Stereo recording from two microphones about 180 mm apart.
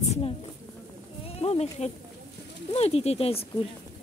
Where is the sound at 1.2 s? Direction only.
35° left (ahead or behind).